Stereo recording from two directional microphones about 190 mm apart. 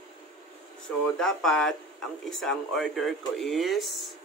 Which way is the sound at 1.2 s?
5° left (ahead or behind).